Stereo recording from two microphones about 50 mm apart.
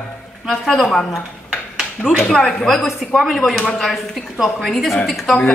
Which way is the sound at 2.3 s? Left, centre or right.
Centre.